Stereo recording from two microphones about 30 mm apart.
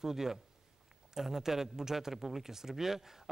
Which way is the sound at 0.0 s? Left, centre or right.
Centre.